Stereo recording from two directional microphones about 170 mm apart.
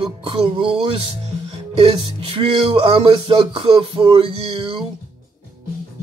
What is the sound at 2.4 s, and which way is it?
Music, 35° right (ahead or behind).